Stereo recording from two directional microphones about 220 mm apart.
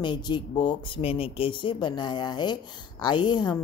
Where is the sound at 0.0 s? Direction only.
20° left (ahead or behind).